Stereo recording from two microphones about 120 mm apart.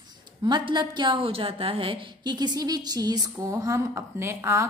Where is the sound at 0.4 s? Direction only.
40° right (ahead or behind).